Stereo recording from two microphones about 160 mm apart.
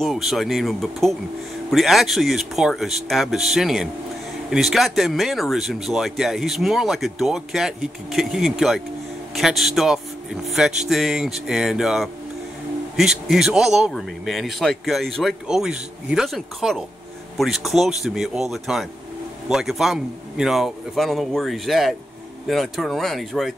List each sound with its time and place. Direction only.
0.0 s speech: centre (ahead or behind)